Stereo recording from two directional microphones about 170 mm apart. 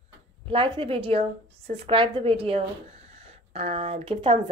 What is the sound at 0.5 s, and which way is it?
A woman's voice, 30° right (ahead or behind).